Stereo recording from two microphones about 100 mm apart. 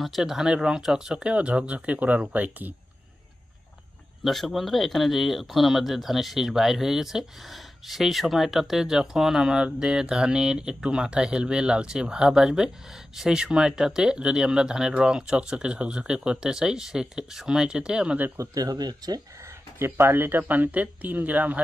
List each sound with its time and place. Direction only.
0.0 s speech: 5° right (ahead or behind)
4.2 s speech: centre (ahead or behind); by 18.4 s 15° right (ahead or behind)
18.4 s speech: 40° right (ahead or behind)
19.8 s speech: 25° right (ahead or behind)